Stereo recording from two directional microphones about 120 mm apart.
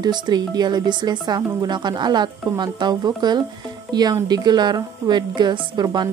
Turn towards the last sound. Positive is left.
turn(degrees=-35)  # may be behind; listen again after turning